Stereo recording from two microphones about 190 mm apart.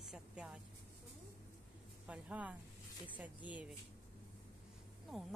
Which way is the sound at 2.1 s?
5° right (ahead or behind).